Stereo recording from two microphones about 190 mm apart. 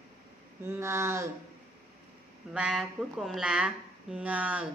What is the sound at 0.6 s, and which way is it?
Speech, 15° right (ahead or behind).